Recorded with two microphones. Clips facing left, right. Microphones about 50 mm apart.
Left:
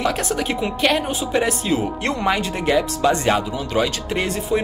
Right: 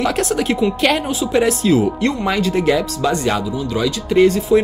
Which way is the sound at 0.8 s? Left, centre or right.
Centre.